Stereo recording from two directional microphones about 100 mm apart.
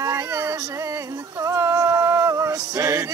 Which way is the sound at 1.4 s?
30° right (ahead or behind).